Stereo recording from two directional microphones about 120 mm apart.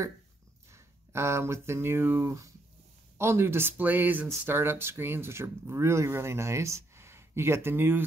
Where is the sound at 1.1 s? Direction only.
20° right (ahead or behind).